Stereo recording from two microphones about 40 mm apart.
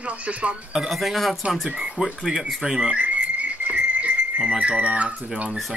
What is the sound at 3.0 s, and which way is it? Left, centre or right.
Whistle, right.